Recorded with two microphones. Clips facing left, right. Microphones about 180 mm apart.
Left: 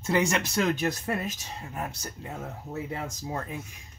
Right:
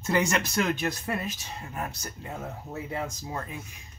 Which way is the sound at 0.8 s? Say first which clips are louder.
Left 1 dB; 45° left (ahead or behind).